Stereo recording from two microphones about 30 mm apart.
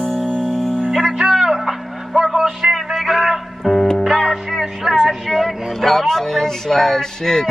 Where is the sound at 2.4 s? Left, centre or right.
Centre.